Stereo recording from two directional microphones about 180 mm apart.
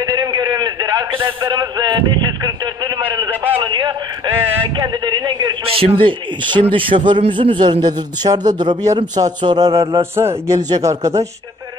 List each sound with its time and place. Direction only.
0.0 s a sound: 20° right (ahead or behind)
3.5 s radio: 25° right (ahead or behind)
4.7 s a man's voice: 25° right (ahead or behind)